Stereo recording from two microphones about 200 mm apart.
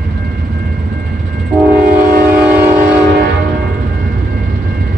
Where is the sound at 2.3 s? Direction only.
10° right (ahead or behind).